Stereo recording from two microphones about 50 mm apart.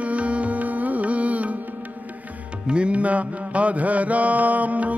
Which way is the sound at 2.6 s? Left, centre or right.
Right.